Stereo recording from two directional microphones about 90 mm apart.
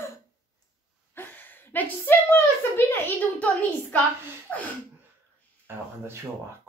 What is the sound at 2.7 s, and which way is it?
A woman's voice, 25° left (ahead or behind).